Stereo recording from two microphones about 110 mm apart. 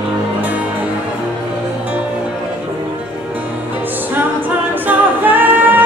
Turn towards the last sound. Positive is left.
turn(degrees=-15)  # may be behind; listen again after turning